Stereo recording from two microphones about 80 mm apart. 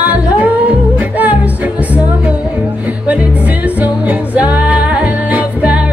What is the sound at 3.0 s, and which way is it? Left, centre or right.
Music, centre.